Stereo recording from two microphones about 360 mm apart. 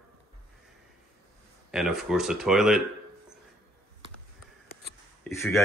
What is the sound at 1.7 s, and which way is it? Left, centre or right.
Speech, centre.